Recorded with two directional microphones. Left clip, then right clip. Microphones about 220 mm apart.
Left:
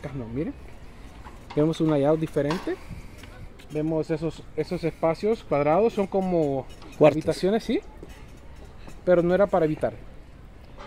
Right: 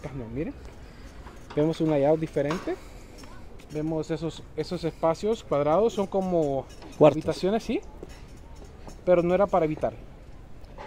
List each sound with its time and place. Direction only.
1.6 s speech: 45° left (ahead or behind)
3.7 s speech: 30° left (ahead or behind)
7.0 s speech: centre (ahead or behind)
7.2 s speech: 40° left (ahead or behind)
9.0 s speech: 50° left (ahead or behind)